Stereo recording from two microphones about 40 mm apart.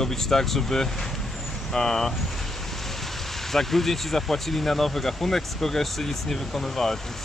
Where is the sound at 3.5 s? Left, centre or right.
Centre.